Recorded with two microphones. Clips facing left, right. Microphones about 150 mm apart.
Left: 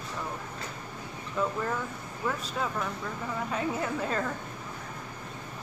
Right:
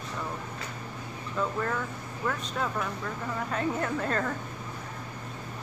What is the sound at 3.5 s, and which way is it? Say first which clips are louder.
Speech: right 2 dB; 5° left (ahead or behind).